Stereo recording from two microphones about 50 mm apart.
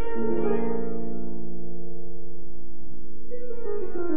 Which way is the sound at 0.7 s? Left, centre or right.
Right.